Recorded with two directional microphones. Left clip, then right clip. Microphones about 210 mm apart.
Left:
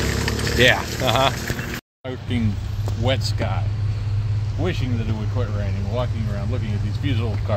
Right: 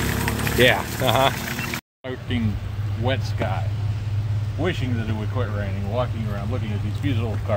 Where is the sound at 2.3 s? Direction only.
45° left (ahead or behind).